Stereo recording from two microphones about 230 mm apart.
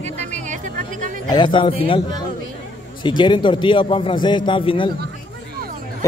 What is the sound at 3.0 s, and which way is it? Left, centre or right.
A man's voice, centre.